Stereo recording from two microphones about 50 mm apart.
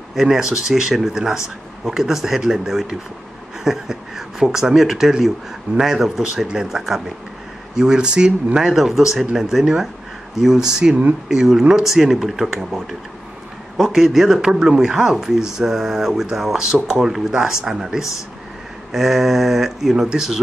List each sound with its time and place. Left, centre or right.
0.1 s speech: centre